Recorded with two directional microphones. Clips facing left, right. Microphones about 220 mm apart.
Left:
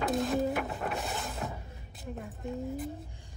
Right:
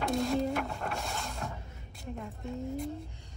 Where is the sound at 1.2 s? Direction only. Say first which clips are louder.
Left 2 dB; 5° left (ahead or behind).